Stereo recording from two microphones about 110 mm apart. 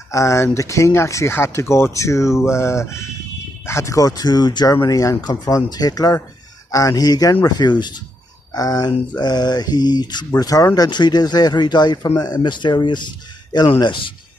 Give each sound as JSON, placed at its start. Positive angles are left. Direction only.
{"t": 0.1, "sound": "speech", "side_deg": 30}